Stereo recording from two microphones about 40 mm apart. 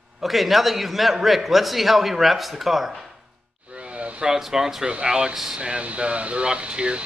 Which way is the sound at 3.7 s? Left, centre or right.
Right.